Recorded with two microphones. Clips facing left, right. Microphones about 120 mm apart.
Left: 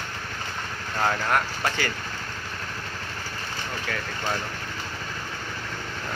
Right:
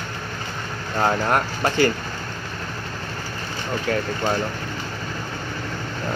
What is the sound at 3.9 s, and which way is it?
Speech, 40° right (ahead or behind).